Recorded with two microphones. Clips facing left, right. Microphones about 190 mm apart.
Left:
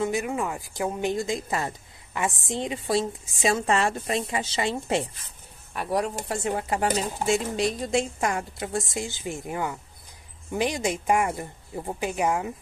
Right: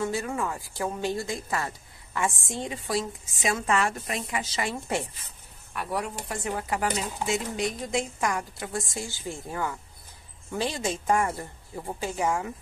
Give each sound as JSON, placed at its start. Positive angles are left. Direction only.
{"t": 0.0, "sound": "a woman's voice", "side_deg": 15}